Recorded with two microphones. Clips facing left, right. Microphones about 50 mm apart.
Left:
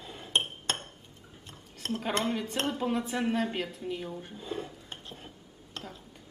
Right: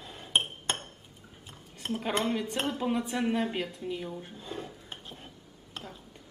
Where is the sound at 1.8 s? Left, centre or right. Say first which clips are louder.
Even; centre.